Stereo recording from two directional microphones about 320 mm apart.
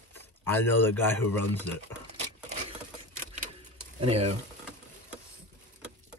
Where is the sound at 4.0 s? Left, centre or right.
Centre.